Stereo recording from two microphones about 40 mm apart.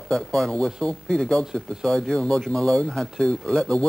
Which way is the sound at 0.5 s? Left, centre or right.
Left.